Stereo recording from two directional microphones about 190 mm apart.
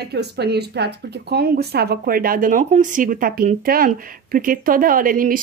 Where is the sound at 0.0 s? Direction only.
60° right (ahead or behind).